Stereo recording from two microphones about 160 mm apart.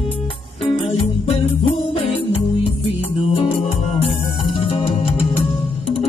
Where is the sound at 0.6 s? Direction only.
40° left (ahead or behind).